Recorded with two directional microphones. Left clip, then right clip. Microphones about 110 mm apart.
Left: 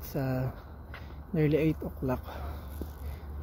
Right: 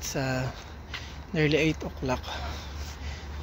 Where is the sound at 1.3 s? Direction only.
85° left.